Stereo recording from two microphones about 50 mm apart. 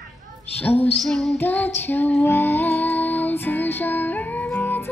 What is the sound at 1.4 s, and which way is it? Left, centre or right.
Female singing, left.